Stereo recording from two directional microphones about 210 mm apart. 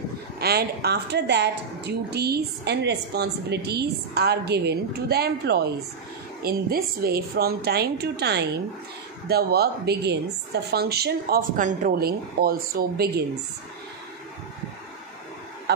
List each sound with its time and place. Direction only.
0.4 s a woman's voice: 50° right (ahead or behind)